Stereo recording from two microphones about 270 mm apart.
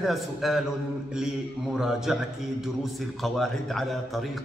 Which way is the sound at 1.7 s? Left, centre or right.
Centre.